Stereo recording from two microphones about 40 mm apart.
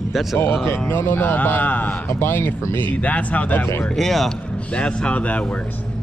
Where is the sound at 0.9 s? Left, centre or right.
Left.